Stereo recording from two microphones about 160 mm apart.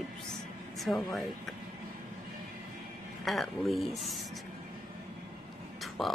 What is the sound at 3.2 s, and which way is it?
Speech, centre (ahead or behind).